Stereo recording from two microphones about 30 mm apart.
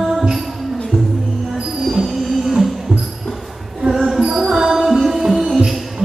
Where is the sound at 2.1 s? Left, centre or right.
Centre.